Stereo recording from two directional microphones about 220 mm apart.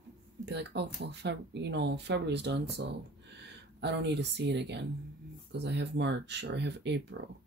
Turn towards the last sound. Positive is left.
turn(degrees=-50)  # may be behind; listen again after turning